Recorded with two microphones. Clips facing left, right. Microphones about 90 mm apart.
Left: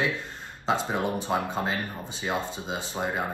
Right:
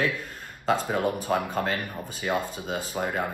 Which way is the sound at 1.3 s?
15° left (ahead or behind).